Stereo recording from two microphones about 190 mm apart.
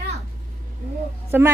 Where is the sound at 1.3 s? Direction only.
10° right (ahead or behind).